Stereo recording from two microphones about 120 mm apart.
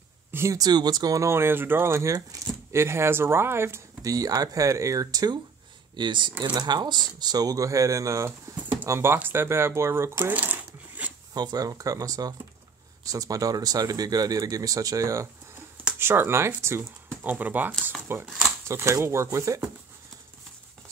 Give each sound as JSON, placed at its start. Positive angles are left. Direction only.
{"t": 0.3, "sound": "a sound", "side_deg": -20}
{"t": 0.6, "sound": "speech", "side_deg": -35}
{"t": 11.3, "sound": "speech", "side_deg": -35}